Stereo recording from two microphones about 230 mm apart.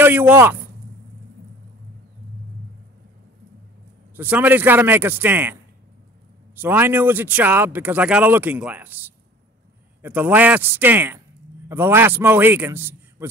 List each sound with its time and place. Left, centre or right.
0.0 s speech: centre
4.2 s speech: centre
10.0 s speech: centre